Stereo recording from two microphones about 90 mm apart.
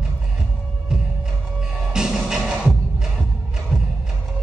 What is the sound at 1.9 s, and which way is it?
Music, 5° right (ahead or behind).